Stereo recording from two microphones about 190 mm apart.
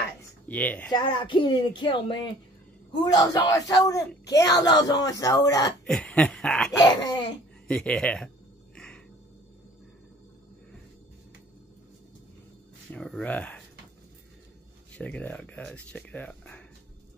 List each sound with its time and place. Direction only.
0.5 s speech: 10° left (ahead or behind)
0.9 s speech: 25° left (ahead or behind)
5.9 s a sound: 5° left (ahead or behind)
6.8 s speech: 20° left (ahead or behind)
7.6 s a sound: 5° left (ahead or behind)
8.7 s music: 5° left (ahead or behind)
12.9 s speech: 5° left (ahead or behind)
15.0 s speech: 5° left (ahead or behind)